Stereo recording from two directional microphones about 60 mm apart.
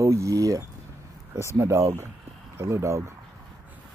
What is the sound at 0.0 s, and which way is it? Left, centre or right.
Speech, right.